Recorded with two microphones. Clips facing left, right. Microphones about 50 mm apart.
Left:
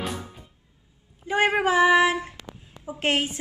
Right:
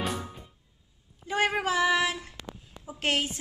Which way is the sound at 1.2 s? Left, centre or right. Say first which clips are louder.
Left 5 dB; left.